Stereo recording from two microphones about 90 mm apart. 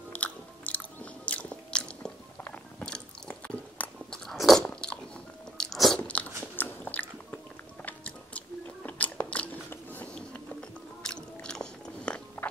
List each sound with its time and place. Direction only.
0.1 s biting: 15° left (ahead or behind)
4.3 s biting: 5° left (ahead or behind)
5.9 s biting: 15° left (ahead or behind)
12.4 s chewing: 15° left (ahead or behind)